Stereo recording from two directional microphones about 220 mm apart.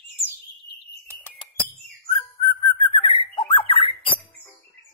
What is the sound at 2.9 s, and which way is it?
Squawk, 25° left (ahead or behind).